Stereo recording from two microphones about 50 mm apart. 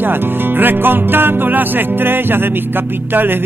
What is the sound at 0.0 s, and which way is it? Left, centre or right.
Music, right.